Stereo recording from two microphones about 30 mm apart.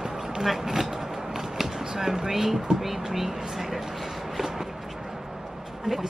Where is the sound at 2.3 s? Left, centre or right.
Centre.